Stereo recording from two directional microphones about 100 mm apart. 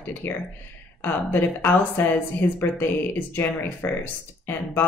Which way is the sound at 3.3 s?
20° left (ahead or behind).